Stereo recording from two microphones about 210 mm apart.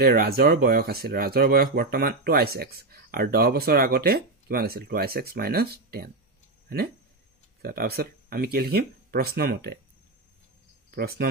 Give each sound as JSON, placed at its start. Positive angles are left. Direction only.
{"t": 0.0, "sound": "speech", "side_deg": -45}
{"t": 7.6, "sound": "speech", "side_deg": -45}
{"t": 10.9, "sound": "speech", "side_deg": -45}